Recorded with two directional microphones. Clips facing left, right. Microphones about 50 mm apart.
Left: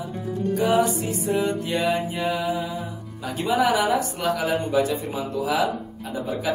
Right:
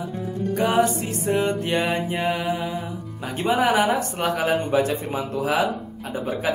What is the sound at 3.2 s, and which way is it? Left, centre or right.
A woman's voice, right.